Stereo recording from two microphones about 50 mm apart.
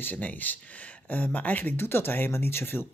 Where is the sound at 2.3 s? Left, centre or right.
Left.